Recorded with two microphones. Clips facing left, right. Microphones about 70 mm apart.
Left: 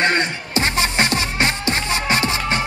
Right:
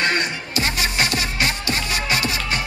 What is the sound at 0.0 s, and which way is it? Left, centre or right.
Music, left.